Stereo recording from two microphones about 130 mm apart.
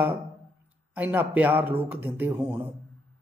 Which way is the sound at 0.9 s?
15° right (ahead or behind).